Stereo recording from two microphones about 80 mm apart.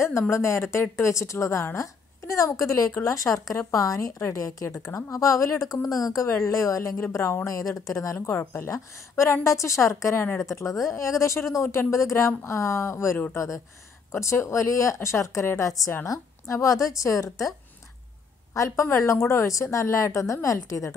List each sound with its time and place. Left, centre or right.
0.3 s a woman's voice: left